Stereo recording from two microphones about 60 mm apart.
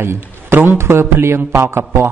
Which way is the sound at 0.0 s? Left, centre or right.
Right.